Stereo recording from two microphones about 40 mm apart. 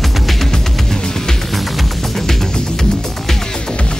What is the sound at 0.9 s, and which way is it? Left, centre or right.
Music, centre.